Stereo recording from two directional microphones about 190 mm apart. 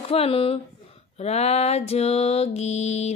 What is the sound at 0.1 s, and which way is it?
Speech, 30° left (ahead or behind).